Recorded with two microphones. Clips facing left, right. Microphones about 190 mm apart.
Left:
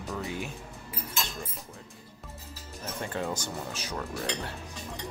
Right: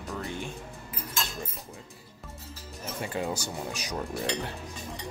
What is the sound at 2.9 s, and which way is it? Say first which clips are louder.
Speech: right 1 dB; 10° right (ahead or behind).